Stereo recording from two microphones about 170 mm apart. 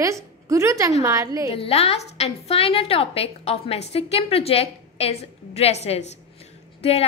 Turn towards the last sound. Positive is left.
turn(degrees=35)  # may be behind; listen again after turning